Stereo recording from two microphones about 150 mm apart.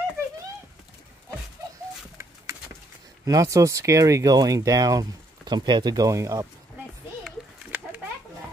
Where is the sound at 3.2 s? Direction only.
25° right (ahead or behind).